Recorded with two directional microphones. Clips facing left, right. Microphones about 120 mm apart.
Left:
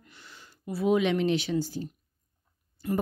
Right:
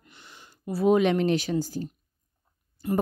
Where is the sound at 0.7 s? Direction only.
40° right (ahead or behind).